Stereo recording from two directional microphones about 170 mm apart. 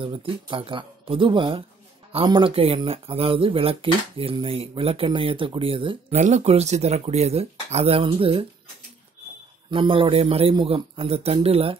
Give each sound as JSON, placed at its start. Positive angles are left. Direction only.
{"t": 0.0, "sound": "speech", "side_deg": -30}
{"t": 9.7, "sound": "speech", "side_deg": -30}